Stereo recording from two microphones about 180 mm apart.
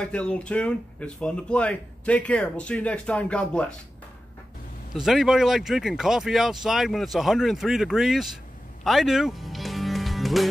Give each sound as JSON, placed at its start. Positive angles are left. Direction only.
{"t": 0.0, "sound": "speech", "side_deg": 5}
{"t": 4.9, "sound": "speech", "side_deg": -5}
{"t": 8.8, "sound": "music", "side_deg": 0}